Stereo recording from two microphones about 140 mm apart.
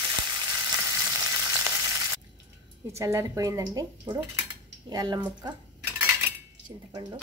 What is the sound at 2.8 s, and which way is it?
Speech, 20° right (ahead or behind).